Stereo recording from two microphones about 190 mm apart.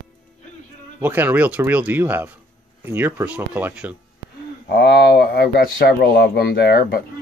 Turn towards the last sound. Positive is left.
turn(degrees=60)  # may be behind; listen again after turning